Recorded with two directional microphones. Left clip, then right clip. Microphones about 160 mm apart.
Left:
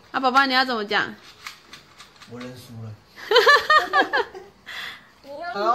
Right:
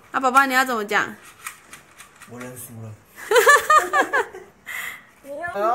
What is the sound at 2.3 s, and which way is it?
Speech, 45° right (ahead or behind).